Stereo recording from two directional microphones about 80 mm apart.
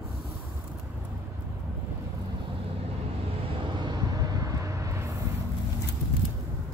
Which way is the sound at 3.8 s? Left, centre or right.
Right.